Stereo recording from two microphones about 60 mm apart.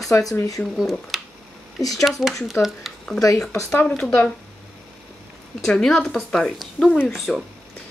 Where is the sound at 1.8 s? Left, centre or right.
Left.